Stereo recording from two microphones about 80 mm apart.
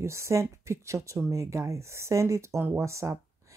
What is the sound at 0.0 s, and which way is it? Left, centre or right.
Speech, right.